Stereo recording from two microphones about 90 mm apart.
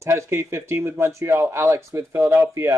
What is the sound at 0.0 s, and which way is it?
Speech, 30° right (ahead or behind).